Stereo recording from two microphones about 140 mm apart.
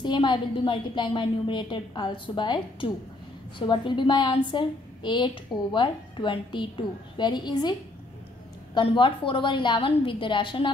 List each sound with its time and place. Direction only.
0.0 s a woman's voice: 35° left (ahead or behind)
8.7 s a woman's voice: 35° left (ahead or behind)